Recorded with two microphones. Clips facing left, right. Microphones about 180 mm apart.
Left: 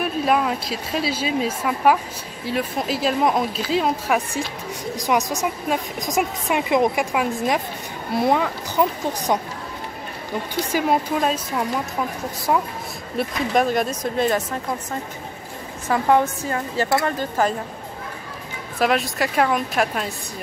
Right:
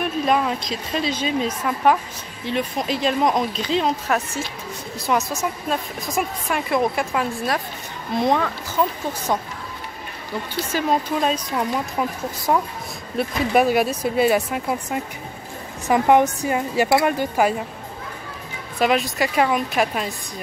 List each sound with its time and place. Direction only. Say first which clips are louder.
0.0 s speech: even; 5° left (ahead or behind)
10.6 s speech: left 1 dB; 10° left (ahead or behind); by 17.6 s 10° right (ahead or behind)
18.8 s speech: right 1 dB; centre (ahead or behind)